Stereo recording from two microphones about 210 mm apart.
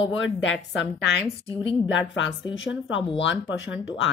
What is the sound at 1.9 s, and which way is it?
Speech, 60° left (ahead or behind).